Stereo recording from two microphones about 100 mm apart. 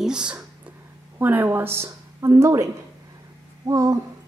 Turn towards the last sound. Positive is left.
turn(degrees=-30)  # may be behind; listen again after turning